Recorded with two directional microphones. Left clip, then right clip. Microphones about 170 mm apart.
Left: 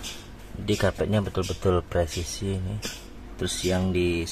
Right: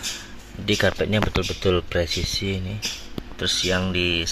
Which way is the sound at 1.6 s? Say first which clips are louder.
Right 2 dB; 25° right (ahead or behind).